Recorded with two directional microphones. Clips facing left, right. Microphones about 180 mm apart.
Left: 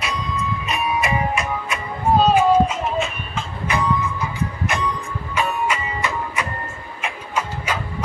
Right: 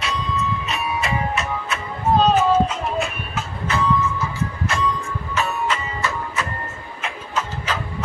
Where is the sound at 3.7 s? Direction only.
15° left (ahead or behind).